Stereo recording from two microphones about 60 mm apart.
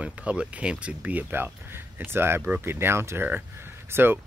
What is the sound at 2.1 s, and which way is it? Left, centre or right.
Speech, right.